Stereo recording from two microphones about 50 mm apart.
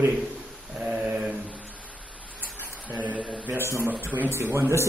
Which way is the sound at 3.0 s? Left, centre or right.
Right.